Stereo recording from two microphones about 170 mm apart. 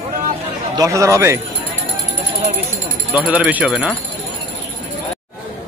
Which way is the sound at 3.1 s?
10° right (ahead or behind).